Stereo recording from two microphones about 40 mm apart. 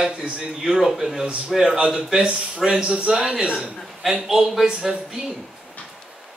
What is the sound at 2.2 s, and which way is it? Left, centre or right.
A man's voice, right.